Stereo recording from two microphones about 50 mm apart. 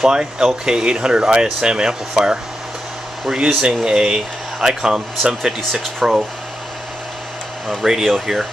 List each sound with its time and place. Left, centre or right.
0.0 s speech: centre
7.6 s speech: centre